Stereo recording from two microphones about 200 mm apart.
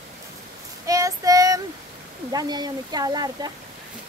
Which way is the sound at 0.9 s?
15° right (ahead or behind).